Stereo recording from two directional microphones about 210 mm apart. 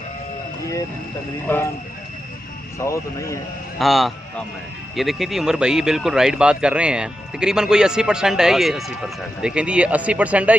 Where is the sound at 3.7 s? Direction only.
Centre (ahead or behind).